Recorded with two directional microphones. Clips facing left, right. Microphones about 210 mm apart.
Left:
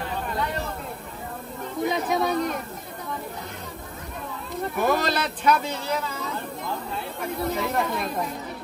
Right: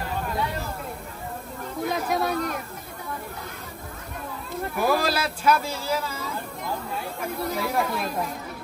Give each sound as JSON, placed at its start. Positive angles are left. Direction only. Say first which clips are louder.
{"t": 1.8, "sound": "speech", "louder": "left 2 dB", "side_deg": 0}
{"t": 4.7, "sound": "speech", "louder": "even", "side_deg": -5}
{"t": 7.4, "sound": "speech", "louder": "even", "side_deg": -5}